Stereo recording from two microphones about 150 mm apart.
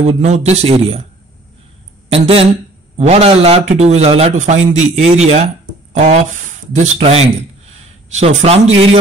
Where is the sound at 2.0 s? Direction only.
40° right (ahead or behind).